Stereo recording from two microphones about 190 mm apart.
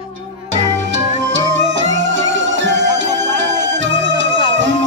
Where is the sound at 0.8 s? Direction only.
75° right (ahead or behind).